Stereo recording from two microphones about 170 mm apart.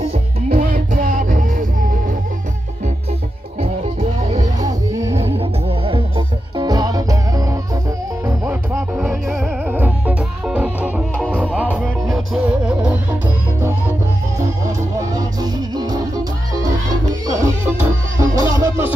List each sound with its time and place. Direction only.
0.1 s music: 45° right (ahead or behind)
4.6 s music: 20° right (ahead or behind)
5.1 s music: 35° right (ahead or behind); by 7.5 s 20° right (ahead or behind)
8.5 s music: 10° right (ahead or behind)
15.0 s music: 20° right (ahead or behind)
17.3 s music: 15° right (ahead or behind)